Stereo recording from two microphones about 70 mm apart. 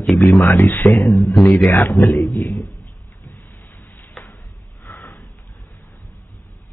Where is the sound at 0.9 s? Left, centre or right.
Centre.